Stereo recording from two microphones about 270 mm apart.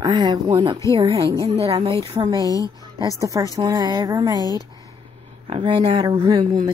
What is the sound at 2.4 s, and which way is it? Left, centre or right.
Speech, centre.